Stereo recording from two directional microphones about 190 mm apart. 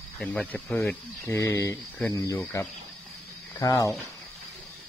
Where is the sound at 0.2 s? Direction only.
5° left (ahead or behind).